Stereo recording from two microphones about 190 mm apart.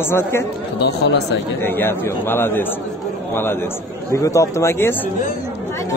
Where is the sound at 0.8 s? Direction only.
60° left (ahead or behind).